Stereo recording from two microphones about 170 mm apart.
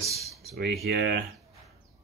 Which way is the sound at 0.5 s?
65° right (ahead or behind).